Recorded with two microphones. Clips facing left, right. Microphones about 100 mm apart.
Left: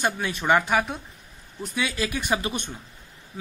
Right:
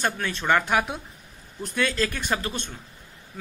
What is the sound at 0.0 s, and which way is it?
Speech, 10° left (ahead or behind).